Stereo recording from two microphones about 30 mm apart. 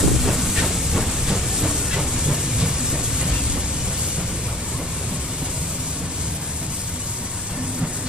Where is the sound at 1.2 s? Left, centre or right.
Centre.